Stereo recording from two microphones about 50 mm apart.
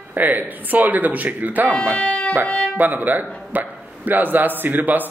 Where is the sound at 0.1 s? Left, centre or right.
Right.